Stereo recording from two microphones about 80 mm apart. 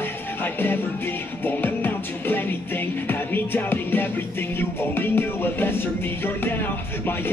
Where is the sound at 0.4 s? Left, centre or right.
Left.